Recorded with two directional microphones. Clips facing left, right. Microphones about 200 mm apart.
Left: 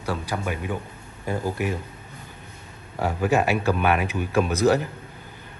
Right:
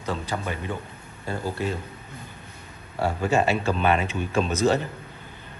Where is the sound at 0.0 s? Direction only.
10° left (ahead or behind).